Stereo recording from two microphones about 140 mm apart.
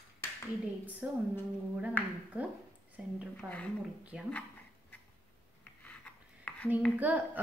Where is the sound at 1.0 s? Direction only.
10° right (ahead or behind).